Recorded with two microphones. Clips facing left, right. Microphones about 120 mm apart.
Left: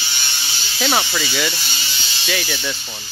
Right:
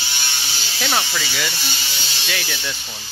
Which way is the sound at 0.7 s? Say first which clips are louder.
Left 3 dB; 15° left (ahead or behind).